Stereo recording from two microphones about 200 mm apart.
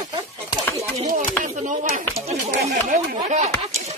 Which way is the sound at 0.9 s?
35° right (ahead or behind).